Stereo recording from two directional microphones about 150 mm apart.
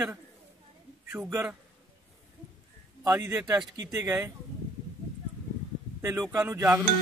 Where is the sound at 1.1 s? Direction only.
10° right (ahead or behind).